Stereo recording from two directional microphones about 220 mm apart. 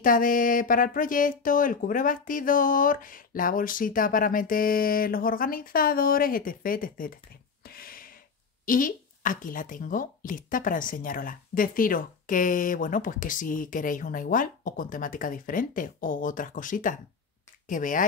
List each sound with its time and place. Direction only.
0.0 s a woman's voice: 40° left (ahead or behind)
7.6 s gasp: 40° left (ahead or behind)
8.6 s a woman's voice: 40° left (ahead or behind)